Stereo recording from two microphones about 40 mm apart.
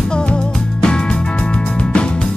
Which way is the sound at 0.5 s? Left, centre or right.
Centre.